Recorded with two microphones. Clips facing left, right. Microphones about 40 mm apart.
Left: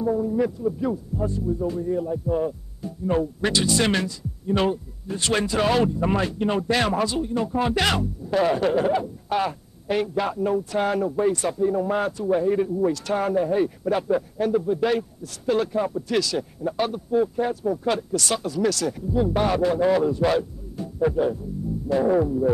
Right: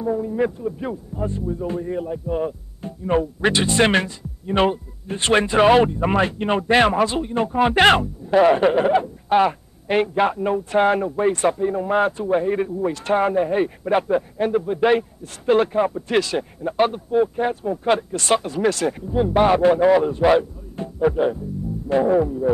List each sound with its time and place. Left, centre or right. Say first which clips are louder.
0.0 s a man's voice: right 1 dB; right
20.8 s music: right 3 dB; right
21.1 s speech: right 2 dB; right
22.0 s a sound: even; centre